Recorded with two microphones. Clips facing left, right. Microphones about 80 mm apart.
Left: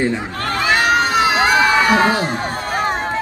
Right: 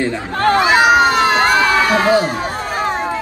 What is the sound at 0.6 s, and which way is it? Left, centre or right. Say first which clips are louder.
Crowd: right 3 dB; centre.